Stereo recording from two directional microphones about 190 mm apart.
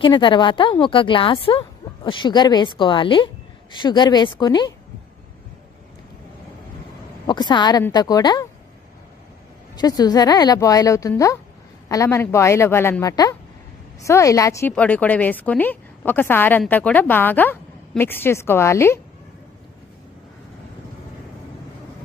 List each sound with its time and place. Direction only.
0.0 s a woman's voice: 25° left (ahead or behind)
7.2 s a woman's voice: 25° left (ahead or behind)
9.8 s a woman's voice: 20° left (ahead or behind)